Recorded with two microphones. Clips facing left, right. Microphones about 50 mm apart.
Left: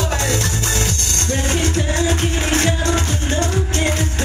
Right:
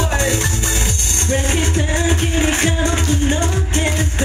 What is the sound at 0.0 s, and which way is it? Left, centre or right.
Music, centre.